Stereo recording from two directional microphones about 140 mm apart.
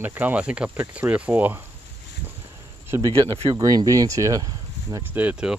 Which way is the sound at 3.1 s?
40° right (ahead or behind).